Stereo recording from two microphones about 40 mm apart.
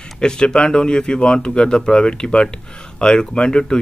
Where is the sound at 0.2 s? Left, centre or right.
Centre.